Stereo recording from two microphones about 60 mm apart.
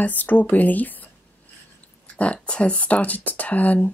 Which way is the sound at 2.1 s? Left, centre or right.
Left.